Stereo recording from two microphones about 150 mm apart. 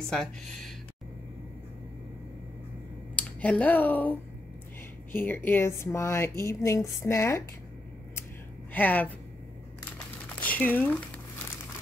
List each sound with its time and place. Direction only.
0.1 s speech: 5° left (ahead or behind)
3.2 s speech: 10° left (ahead or behind)
8.7 s speech: 10° left (ahead or behind)
10.4 s speech: 10° left (ahead or behind)